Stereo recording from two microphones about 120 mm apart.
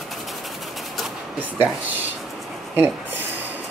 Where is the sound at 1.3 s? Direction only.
15° right (ahead or behind).